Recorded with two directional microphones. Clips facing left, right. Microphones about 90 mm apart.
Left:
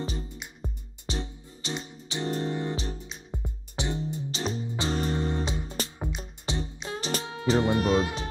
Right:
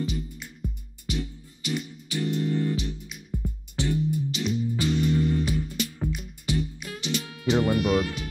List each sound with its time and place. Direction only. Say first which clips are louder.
0.0 s music: right 3 dB; 35° left (ahead or behind)
3.4 s music: right 4 dB; 20° left (ahead or behind)
4.0 s music: right 4 dB; 35° left (ahead or behind)